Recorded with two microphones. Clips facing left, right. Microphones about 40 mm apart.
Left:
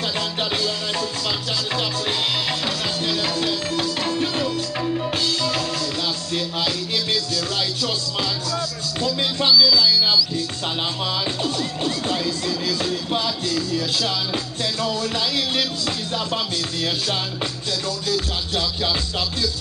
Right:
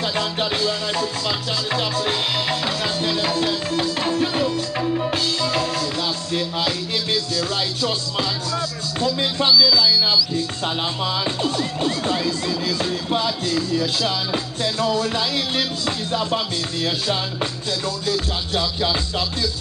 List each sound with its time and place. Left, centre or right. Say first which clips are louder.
0.5 s music: right 2 dB; centre
7.3 s music: right 1 dB; centre
11.2 s music: right 2 dB; centre
17.8 s music: right 1 dB; centre